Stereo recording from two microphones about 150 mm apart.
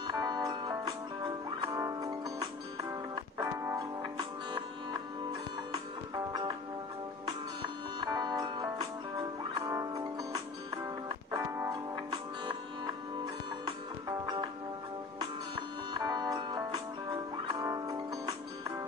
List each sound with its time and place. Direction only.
0.0 s music: 30° right (ahead or behind)
3.3 s music: 20° right (ahead or behind)
5.7 s music: 30° right (ahead or behind)
8.0 s music: 25° right (ahead or behind)
15.9 s music: 25° right (ahead or behind)